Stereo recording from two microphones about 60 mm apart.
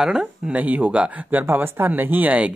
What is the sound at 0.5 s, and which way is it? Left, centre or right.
Speech, right.